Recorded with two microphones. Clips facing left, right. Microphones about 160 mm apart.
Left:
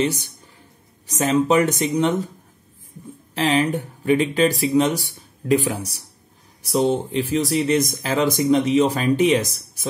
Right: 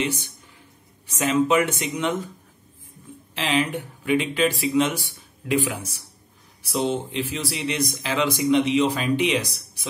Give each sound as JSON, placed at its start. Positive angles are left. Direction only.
{"t": 0.0, "sound": "speech", "side_deg": 40}
{"t": 3.3, "sound": "speech", "side_deg": 40}